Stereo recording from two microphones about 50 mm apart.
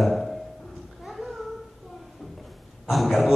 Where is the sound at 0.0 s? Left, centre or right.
Centre.